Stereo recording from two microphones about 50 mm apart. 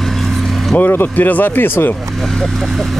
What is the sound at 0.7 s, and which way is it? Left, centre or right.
Speech, left.